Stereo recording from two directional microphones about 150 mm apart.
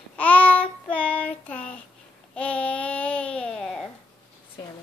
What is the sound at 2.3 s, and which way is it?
Babbling, 10° left (ahead or behind).